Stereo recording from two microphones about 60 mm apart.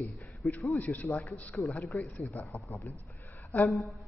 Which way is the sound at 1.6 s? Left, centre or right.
Left.